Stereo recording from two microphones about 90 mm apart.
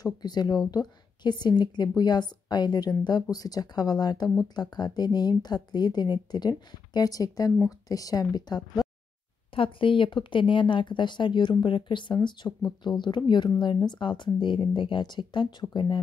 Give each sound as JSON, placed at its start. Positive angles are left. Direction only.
{"t": 0.0, "sound": "a woman's voice", "side_deg": 50}
{"t": 9.5, "sound": "speech", "side_deg": 80}